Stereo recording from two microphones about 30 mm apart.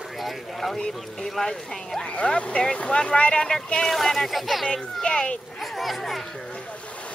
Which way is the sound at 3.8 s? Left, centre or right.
Centre.